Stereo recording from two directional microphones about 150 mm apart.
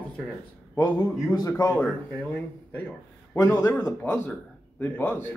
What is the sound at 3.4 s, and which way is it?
A man's voice, 20° left (ahead or behind).